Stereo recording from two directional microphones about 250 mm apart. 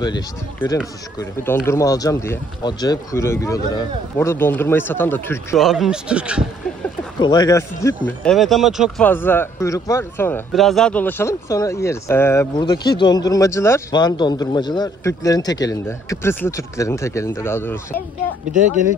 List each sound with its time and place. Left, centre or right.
0.0 s speech: centre
5.7 s speech: centre
7.2 s speech: centre